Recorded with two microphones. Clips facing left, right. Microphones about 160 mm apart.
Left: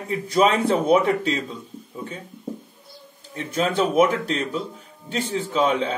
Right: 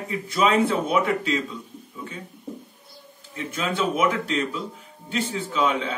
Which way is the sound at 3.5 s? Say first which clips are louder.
Left 6 dB; 40° left (ahead or behind).